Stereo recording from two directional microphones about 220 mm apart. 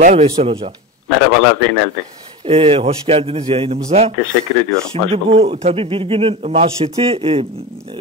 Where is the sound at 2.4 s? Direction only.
25° right (ahead or behind).